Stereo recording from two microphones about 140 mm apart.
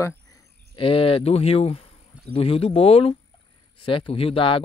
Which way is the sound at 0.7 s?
40° left (ahead or behind).